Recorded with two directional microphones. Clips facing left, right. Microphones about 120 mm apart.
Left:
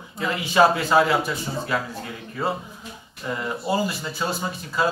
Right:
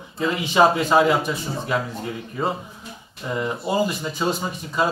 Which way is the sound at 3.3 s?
20° right (ahead or behind).